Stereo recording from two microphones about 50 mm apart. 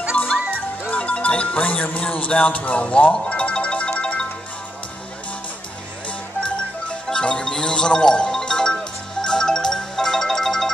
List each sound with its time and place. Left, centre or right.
0.2 s music: left
6.0 s music: left